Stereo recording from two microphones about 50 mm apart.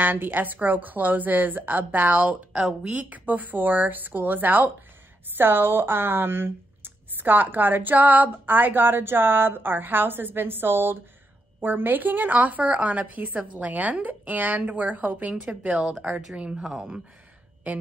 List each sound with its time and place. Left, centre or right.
0.0 s a woman's voice: right
16.5 s speech: centre